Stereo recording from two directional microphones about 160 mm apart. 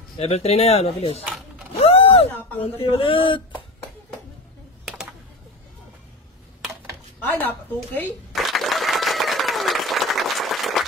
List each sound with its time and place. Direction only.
0.2 s speech: 40° left (ahead or behind)
1.7 s vehicle: 40° left (ahead or behind)
2.6 s speech: 35° left (ahead or behind)
7.3 s speech: 10° left (ahead or behind)
8.3 s applause: centre (ahead or behind)